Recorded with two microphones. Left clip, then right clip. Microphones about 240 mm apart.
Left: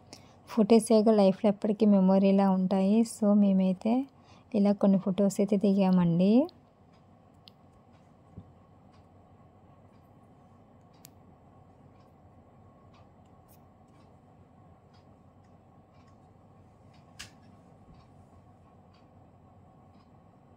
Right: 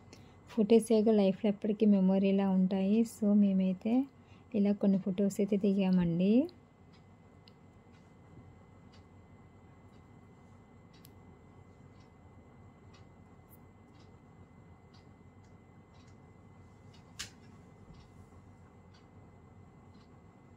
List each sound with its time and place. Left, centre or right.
0.1 s a woman's voice: left